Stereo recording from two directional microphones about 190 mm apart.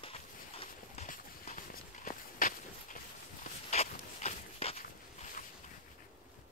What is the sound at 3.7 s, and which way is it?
Dog, 35° left (ahead or behind).